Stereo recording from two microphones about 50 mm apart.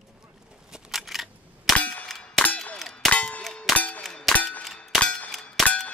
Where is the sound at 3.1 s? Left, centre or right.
Left.